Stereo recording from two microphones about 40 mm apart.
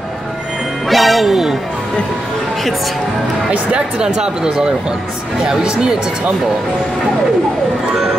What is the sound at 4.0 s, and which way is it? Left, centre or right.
Speech, centre.